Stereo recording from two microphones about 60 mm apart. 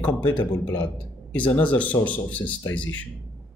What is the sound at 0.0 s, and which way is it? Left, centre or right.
Speech, left.